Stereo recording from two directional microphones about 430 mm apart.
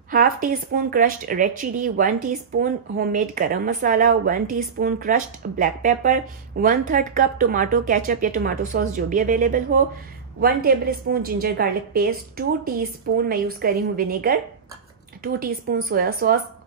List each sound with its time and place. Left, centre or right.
0.1 s speech: centre